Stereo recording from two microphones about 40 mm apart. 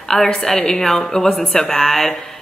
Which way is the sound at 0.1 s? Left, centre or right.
Centre.